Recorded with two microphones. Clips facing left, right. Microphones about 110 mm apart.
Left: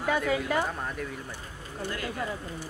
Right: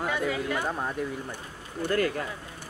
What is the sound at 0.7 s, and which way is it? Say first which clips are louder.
Speech: right 4 dB; 20° right (ahead or behind).